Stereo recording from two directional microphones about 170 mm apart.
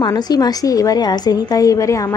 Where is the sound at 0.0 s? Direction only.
25° left (ahead or behind).